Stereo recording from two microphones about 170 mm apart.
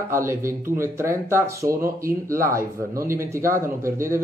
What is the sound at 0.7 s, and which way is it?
Speech, 15° right (ahead or behind).